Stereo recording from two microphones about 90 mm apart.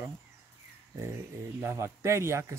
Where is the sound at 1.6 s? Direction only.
30° right (ahead or behind).